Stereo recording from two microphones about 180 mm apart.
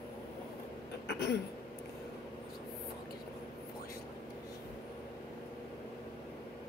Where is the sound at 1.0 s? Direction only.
65° left (ahead or behind).